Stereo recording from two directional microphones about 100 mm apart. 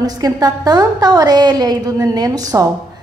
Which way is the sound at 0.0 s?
40° right (ahead or behind).